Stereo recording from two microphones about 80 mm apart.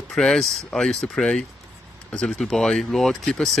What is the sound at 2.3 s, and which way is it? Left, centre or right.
Speech, centre.